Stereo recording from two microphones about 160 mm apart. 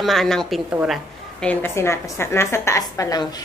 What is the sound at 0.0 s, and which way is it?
A woman's voice, centre (ahead or behind).